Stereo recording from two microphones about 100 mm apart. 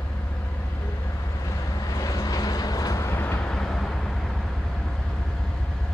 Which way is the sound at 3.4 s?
5° left (ahead or behind).